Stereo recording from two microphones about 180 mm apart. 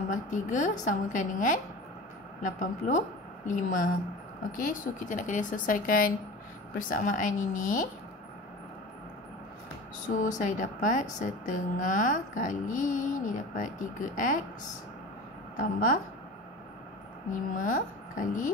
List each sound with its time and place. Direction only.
0.1 s a woman's voice: 45° left (ahead or behind)
10.0 s a woman's voice: 45° left (ahead or behind)
14.1 s a woman's voice: 45° left (ahead or behind)
15.5 s a woman's voice: 45° left (ahead or behind)
17.3 s a woman's voice: 50° left (ahead or behind)